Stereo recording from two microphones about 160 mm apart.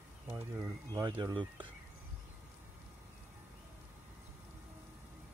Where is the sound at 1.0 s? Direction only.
25° right (ahead or behind).